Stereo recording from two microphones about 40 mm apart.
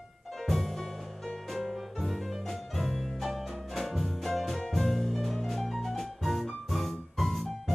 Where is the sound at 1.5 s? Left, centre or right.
Centre.